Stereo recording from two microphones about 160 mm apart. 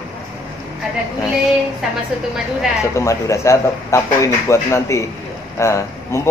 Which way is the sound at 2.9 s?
20° left (ahead or behind).